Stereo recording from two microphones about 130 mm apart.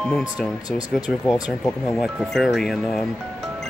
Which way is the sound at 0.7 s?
30° left (ahead or behind).